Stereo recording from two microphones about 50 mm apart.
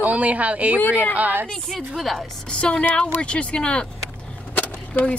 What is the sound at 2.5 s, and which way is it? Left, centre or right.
Speech, left.